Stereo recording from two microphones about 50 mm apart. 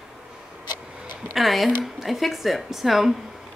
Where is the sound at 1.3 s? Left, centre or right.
Centre.